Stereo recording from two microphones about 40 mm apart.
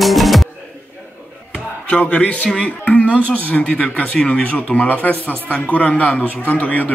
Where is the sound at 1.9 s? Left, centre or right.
Left.